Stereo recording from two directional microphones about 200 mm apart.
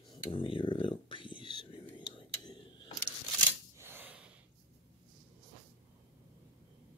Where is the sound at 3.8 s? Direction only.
10° right (ahead or behind).